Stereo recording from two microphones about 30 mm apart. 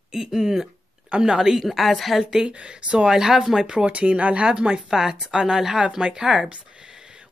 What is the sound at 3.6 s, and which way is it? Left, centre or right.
Speech, right.